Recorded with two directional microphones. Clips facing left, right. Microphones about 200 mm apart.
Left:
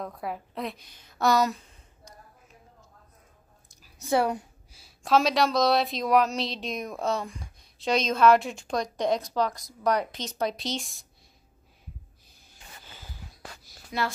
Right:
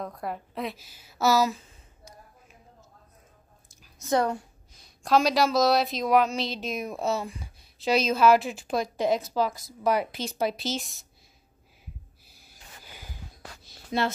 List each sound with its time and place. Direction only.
0.0 s speech: centre (ahead or behind)
3.8 s a woman's voice: 10° left (ahead or behind)
12.3 s snort: 10° right (ahead or behind)
13.7 s a sound: 25° right (ahead or behind)